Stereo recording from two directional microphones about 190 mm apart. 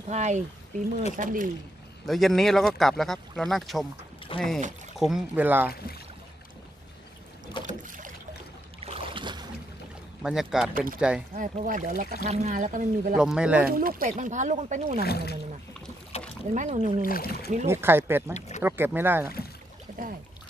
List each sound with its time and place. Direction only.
0.1 s speech: 40° right (ahead or behind)
2.0 s speech: centre (ahead or behind)
4.3 s speech: 30° left (ahead or behind)
4.9 s speech: centre (ahead or behind)
7.6 s boat: 45° right (ahead or behind)
8.8 s boat: 30° right (ahead or behind)
10.2 s speech: 5° right (ahead or behind)
11.3 s speech: 45° right (ahead or behind)
13.1 s speech: 5° right (ahead or behind)
13.7 s speech: 50° right (ahead or behind)
15.0 s speech: 55° left (ahead or behind)
16.5 s speech: 40° right (ahead or behind)
17.0 s speech: 50° left (ahead or behind)
17.6 s speech: 10° right (ahead or behind)